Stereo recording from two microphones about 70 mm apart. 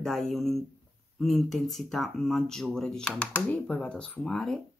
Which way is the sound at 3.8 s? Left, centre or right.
Centre.